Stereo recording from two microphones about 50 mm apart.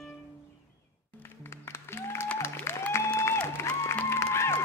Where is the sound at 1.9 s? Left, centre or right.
Left.